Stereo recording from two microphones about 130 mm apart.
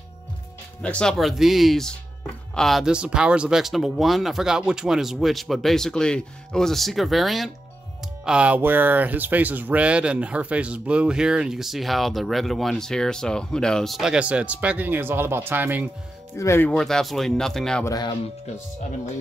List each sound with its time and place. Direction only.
0.8 s speech: 5° left (ahead or behind); by 15.9 s 15° right (ahead or behind)
16.3 s speech: 20° left (ahead or behind)
16.6 s speech: 5° left (ahead or behind)
17.8 s speech: 30° left (ahead or behind)